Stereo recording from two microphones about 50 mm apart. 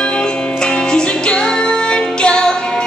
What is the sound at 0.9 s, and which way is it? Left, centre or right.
Music, centre.